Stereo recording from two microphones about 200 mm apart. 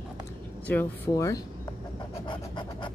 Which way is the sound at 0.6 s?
10° left (ahead or behind).